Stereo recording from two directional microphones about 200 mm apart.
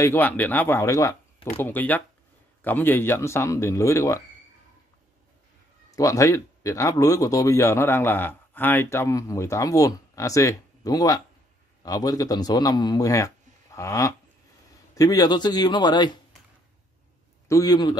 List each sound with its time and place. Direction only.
0.0 s speech: 10° left (ahead or behind)
5.9 s a man's voice: 15° left (ahead or behind)
17.5 s a man's voice: 20° left (ahead or behind)